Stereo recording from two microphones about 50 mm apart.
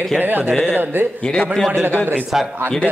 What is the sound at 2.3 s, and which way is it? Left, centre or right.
Speech, centre.